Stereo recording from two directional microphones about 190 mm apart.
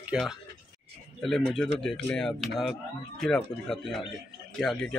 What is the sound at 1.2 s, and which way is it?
A man's voice, 5° left (ahead or behind).